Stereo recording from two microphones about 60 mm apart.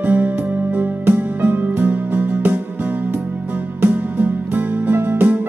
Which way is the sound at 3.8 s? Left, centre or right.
Right.